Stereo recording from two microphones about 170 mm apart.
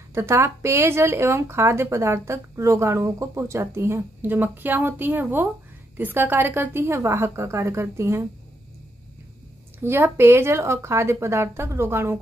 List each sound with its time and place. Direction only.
0.1 s speech: 15° right (ahead or behind)
9.8 s speech: 15° right (ahead or behind)